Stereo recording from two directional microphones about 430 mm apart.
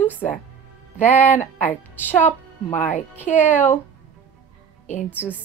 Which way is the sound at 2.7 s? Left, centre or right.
Centre.